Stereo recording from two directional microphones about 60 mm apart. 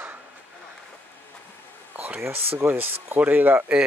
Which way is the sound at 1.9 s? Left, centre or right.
Right.